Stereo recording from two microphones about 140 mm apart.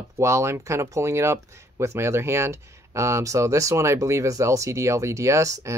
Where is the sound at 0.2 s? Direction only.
20° right (ahead or behind).